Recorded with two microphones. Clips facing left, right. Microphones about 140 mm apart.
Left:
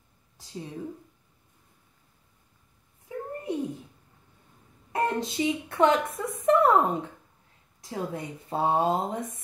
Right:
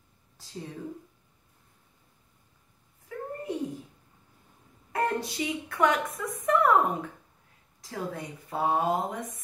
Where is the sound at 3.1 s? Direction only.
20° left (ahead or behind).